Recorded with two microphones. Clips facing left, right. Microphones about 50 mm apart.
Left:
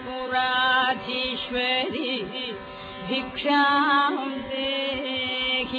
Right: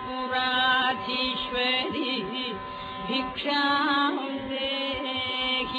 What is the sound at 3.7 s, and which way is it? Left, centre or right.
Music, centre.